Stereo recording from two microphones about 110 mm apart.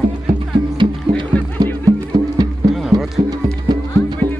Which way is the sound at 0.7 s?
45° right (ahead or behind).